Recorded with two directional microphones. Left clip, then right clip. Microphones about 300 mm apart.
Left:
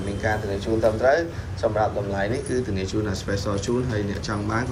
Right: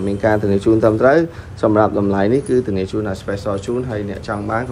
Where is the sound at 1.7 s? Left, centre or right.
Right.